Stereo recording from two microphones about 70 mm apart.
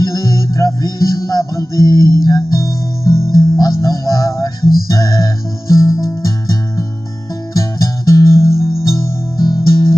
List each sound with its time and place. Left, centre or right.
0.0 s music: left
3.3 s music: left
9.4 s music: left